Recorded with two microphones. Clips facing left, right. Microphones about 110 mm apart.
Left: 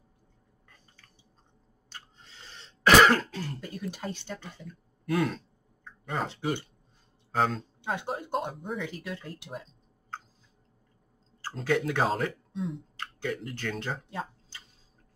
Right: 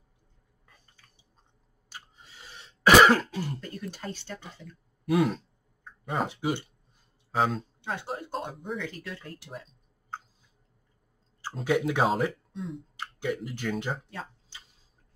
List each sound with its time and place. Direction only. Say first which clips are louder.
1.9 s throat clearing: right 1 dB; 10° right (ahead or behind)
3.9 s speech: left 1 dB; 15° left (ahead or behind)
5.0 s speech: right 3 dB; 5° right (ahead or behind)
7.8 s speech: left 5 dB; 15° left (ahead or behind)
8.5 s speech: even; centre (ahead or behind)
8.8 s speech: left 1 dB; 20° left (ahead or behind)
11.5 s speech: right 1 dB; 10° right (ahead or behind)
12.9 s speech: right 2 dB; 15° right (ahead or behind)